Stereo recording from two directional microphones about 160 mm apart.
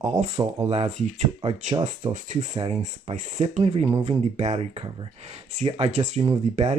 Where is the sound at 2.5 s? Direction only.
40° right (ahead or behind).